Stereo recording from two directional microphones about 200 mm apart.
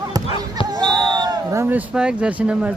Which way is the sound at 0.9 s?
20° right (ahead or behind).